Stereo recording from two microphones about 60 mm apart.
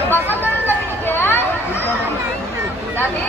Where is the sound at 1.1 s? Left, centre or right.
Left.